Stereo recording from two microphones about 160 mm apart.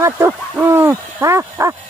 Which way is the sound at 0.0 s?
15° right (ahead or behind).